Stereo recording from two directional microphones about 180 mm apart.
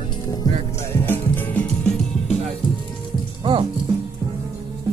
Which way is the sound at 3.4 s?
25° right (ahead or behind).